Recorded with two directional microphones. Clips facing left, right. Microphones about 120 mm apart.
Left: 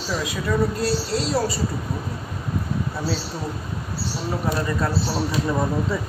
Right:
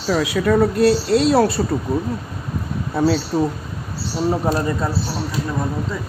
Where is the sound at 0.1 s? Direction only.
65° right (ahead or behind).